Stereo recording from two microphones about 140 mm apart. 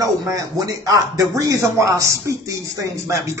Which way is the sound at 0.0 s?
25° right (ahead or behind).